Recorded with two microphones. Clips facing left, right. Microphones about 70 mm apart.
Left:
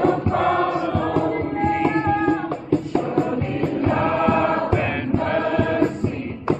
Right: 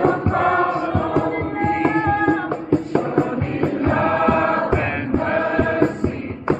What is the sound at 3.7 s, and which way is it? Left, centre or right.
Choir, right.